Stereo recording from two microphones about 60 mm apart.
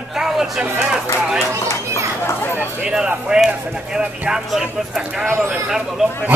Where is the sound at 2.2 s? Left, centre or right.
Left.